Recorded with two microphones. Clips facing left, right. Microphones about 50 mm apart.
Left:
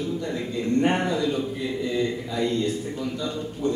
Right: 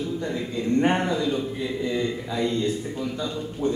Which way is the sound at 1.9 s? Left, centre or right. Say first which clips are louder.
Left 2 dB; centre.